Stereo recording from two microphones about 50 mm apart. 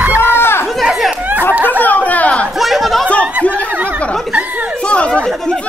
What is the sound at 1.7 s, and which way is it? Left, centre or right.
Chatter, left.